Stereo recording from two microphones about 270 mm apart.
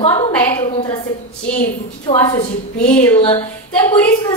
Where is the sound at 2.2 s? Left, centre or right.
Centre.